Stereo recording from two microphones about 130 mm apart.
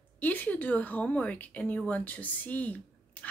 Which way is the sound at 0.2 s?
15° left (ahead or behind).